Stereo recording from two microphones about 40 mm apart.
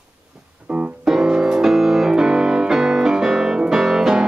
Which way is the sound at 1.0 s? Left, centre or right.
Centre.